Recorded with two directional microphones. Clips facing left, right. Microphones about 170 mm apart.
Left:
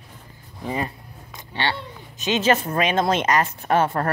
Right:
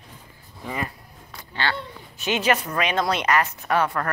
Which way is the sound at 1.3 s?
20° left (ahead or behind).